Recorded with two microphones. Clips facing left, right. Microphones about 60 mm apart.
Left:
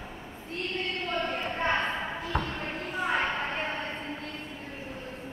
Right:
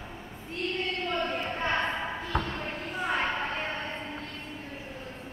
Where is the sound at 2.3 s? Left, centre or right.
Centre.